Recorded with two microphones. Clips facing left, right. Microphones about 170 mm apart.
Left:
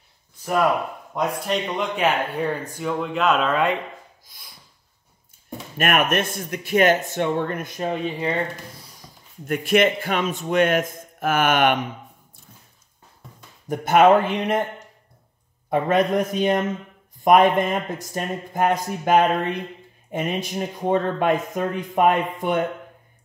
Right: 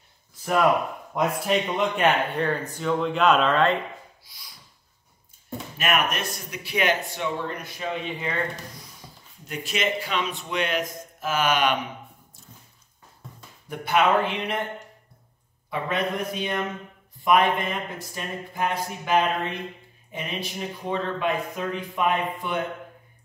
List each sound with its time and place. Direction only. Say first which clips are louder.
1.1 s speech: even; centre (ahead or behind)
4.2 s a sound: left 1 dB; 50° left (ahead or behind)
5.8 s speech: left 5 dB; 50° left (ahead or behind); by 8.4 s 35° left (ahead or behind)
9.5 s speech: left 9 dB; 55° left (ahead or behind)
13.7 s speech: left 7 dB; 45° left (ahead or behind)
15.7 s speech: left 8 dB; 45° left (ahead or behind)